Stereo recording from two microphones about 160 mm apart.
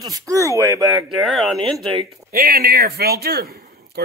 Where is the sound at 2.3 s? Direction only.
75° right (ahead or behind).